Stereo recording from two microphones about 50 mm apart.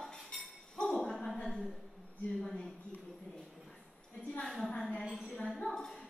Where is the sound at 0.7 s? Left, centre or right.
Centre.